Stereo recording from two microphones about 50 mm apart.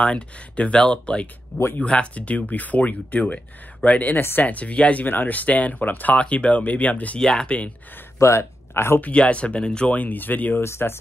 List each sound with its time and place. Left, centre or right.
0.0 s speech: left
6.1 s speech: left
7.2 s speech: centre
8.2 s speech: left
9.0 s speech: left
9.8 s speech: left
10.6 s speech: left